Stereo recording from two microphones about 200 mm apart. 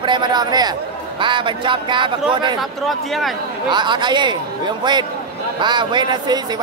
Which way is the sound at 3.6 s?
20° right (ahead or behind).